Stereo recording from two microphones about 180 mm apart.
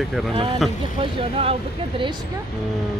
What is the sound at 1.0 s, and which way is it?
Speech, 30° right (ahead or behind).